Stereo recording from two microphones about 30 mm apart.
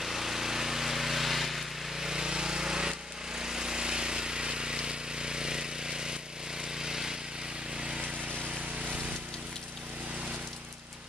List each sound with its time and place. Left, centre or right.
0.0 s vehicle: centre
2.0 s a sound: right
6.6 s vehicle: right